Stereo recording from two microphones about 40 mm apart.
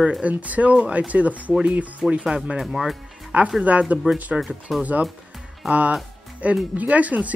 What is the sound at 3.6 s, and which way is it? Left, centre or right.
Speech, right.